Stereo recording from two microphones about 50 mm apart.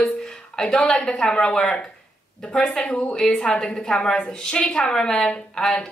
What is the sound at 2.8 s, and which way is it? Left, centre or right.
Speech, left.